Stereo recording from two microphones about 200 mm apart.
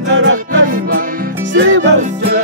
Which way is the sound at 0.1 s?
65° right (ahead or behind).